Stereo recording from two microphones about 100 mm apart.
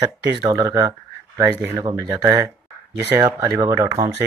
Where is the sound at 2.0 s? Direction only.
40° right (ahead or behind).